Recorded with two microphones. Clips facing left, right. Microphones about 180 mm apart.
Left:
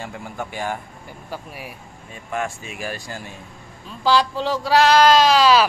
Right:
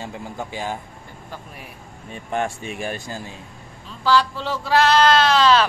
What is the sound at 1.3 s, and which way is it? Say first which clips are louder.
Speech: left 5 dB; 10° left (ahead or behind).